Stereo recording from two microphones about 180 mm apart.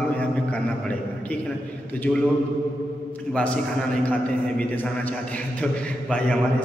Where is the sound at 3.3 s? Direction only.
5° left (ahead or behind).